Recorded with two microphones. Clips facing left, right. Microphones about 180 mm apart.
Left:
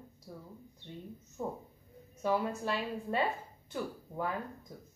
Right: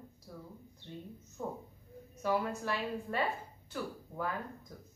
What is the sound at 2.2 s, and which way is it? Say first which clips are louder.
Speech: left 1 dB; 20° left (ahead or behind).